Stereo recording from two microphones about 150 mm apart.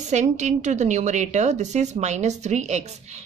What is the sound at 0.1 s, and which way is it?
A woman's voice, 50° right (ahead or behind).